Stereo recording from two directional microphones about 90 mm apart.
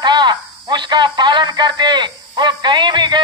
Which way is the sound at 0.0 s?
55° right (ahead or behind).